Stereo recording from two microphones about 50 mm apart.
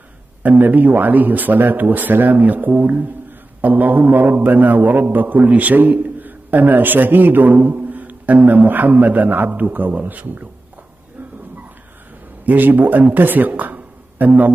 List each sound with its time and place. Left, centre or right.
0.4 s a man's voice: right
12.4 s speech: right